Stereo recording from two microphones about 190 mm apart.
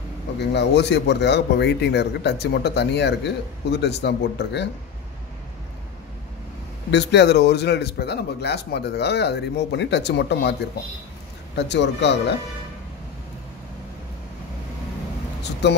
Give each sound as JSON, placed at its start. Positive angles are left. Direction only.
{"t": 0.4, "sound": "a man's voice", "side_deg": 65}
{"t": 6.9, "sound": "a man's voice", "side_deg": 65}
{"t": 11.5, "sound": "a man's voice", "side_deg": 65}
{"t": 15.6, "sound": "a man's voice", "side_deg": 65}